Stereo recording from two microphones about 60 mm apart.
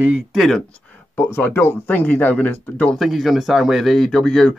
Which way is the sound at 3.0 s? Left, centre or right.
Centre.